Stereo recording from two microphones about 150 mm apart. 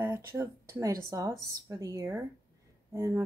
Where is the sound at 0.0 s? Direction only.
15° right (ahead or behind).